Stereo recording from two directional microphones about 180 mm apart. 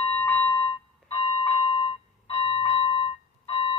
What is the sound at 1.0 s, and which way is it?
Alarm clock, 30° left (ahead or behind).